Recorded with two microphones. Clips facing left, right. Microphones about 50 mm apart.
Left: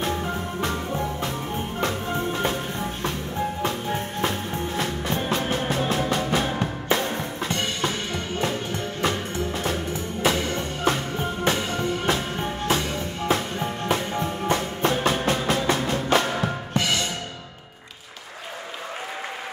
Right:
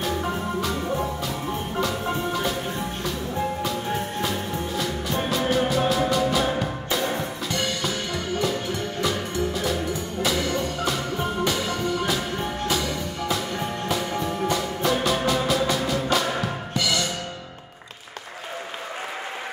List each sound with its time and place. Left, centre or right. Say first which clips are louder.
0.0 s music: right 1 dB; left
1.8 s music: right 1 dB; left
4.2 s music: left 1 dB; left